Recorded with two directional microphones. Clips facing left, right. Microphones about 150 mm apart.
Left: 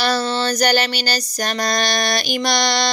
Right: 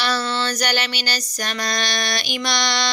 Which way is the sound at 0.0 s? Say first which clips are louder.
Left 4 dB; 40° left (ahead or behind).